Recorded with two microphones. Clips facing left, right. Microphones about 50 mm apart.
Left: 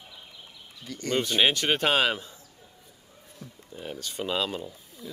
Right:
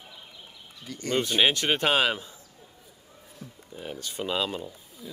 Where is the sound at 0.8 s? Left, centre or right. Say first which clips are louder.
Even; centre.